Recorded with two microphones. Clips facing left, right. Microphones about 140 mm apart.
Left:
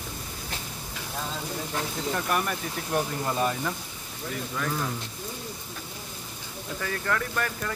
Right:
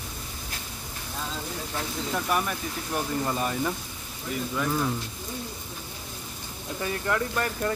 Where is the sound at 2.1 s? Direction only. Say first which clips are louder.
Even; centre (ahead or behind).